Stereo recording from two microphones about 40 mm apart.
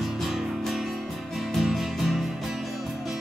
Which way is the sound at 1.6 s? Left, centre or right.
Centre.